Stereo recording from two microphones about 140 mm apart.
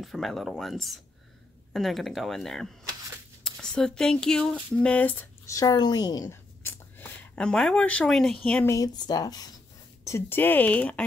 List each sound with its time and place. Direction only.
0.0 s speech: centre (ahead or behind)
5.5 s speech: 25° left (ahead or behind)
6.7 s speech: 10° left (ahead or behind)
8.6 s speech: 25° left (ahead or behind)
10.0 s speech: 15° left (ahead or behind)